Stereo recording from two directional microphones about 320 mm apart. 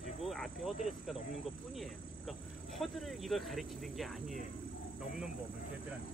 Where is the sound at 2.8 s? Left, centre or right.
Centre.